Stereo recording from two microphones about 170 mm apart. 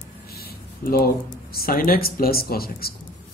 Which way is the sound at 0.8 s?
60° left (ahead or behind).